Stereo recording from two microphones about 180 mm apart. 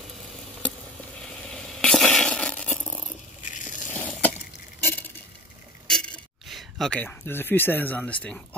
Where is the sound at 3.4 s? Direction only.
45° left (ahead or behind).